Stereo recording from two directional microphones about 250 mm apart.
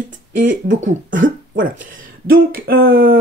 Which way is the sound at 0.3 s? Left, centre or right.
Right.